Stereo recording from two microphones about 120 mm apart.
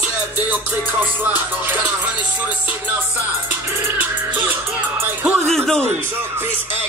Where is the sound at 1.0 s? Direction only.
15° right (ahead or behind).